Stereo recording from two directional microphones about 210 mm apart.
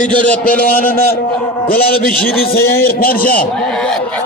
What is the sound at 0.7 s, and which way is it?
A man's voice, 45° left (ahead or behind).